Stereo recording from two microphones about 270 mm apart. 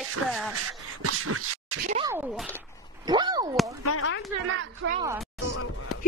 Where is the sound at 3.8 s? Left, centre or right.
Left.